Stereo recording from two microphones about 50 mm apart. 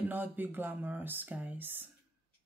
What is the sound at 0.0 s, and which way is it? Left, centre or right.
Speech, right.